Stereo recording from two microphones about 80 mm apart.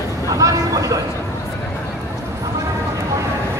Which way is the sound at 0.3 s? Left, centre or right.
Right.